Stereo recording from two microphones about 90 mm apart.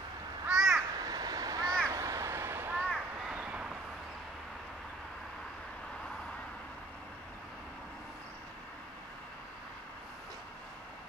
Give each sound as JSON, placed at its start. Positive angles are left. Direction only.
{"t": 0.5, "sound": "crow", "side_deg": -5}
{"t": 0.9, "sound": "crow", "side_deg": -50}
{"t": 3.3, "sound": "vehicle", "side_deg": -10}